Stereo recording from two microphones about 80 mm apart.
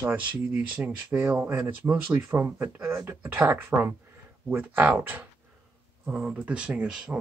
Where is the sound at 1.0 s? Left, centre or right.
Centre.